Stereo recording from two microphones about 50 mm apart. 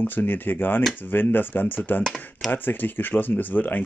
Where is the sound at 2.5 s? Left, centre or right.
Left.